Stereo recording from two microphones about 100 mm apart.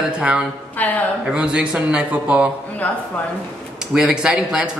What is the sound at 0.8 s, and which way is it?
Speech, 15° left (ahead or behind).